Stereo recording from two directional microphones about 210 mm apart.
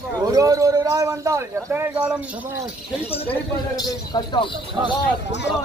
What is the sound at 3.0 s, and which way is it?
Speech, 30° left (ahead or behind).